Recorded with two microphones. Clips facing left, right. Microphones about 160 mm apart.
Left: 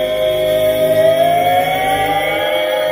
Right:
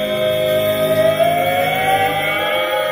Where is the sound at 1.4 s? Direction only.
40° left (ahead or behind).